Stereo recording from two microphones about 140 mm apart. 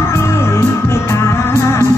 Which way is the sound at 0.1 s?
20° left (ahead or behind).